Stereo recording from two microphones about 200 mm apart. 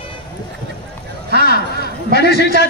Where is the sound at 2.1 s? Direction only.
55° left (ahead or behind).